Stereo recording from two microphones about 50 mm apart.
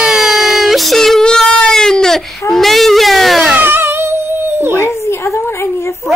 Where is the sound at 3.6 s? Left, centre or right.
Right.